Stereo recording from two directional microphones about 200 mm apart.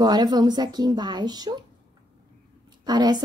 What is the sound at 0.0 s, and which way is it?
Speech, 20° right (ahead or behind).